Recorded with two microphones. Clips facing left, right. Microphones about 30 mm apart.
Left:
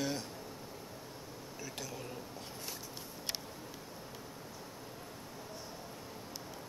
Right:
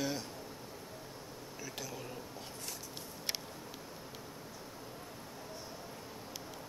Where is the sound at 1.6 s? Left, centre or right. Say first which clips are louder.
Even; centre.